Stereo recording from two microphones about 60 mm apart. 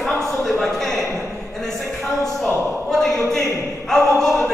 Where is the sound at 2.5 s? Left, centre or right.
Left.